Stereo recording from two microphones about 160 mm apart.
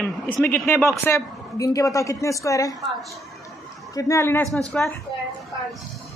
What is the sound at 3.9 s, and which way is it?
Speech, 20° left (ahead or behind).